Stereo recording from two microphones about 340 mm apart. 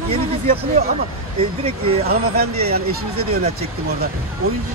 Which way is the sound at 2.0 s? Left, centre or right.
Right.